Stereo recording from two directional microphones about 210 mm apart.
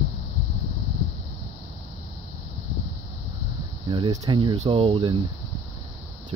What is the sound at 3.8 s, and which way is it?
Speech, 20° right (ahead or behind).